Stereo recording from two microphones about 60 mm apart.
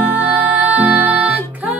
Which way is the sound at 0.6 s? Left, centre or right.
Right.